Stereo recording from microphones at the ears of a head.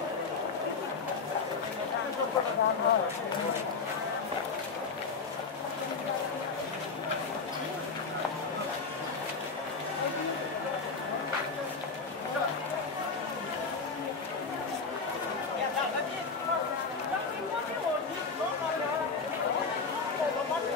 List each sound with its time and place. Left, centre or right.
2.1 s speech: left